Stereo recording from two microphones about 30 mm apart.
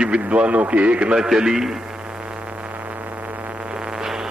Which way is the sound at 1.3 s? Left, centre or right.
Centre.